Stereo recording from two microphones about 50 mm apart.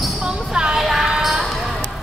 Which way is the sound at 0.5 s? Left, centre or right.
Centre.